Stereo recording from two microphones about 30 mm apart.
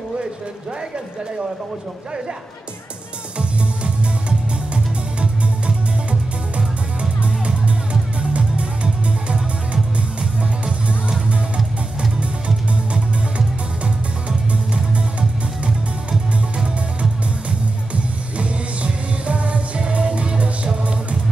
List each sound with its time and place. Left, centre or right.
3.3 s music: right
10.6 s music: right
14.7 s music: right
16.5 s music: right
18.4 s music: right